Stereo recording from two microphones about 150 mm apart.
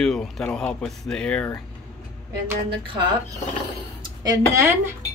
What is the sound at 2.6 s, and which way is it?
Speech, 35° right (ahead or behind).